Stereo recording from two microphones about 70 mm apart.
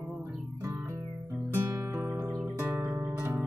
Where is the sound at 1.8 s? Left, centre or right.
Right.